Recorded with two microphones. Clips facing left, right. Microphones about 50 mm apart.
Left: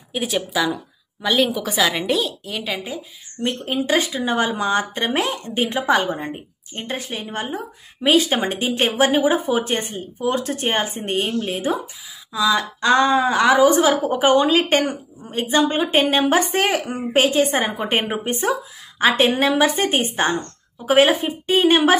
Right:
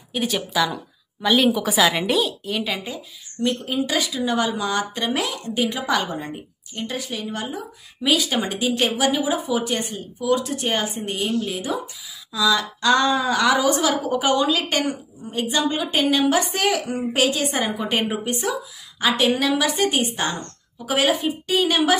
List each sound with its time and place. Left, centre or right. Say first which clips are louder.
0.1 s a woman's voice: left 1 dB; centre
3.4 s speech: left 1 dB; left
12.3 s speech: left 1 dB; left